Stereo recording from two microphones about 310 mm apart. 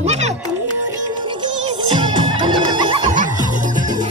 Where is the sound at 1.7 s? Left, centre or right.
Centre.